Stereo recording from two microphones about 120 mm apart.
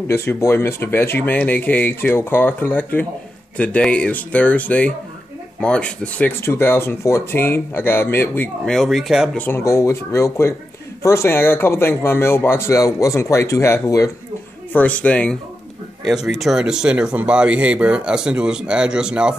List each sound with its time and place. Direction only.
0.1 s speech: 20° left (ahead or behind)
8.6 s speech: centre (ahead or behind)
9.4 s speech: 20° left (ahead or behind)
14.7 s speech: 10° left (ahead or behind)
16.0 s speech: 5° right (ahead or behind)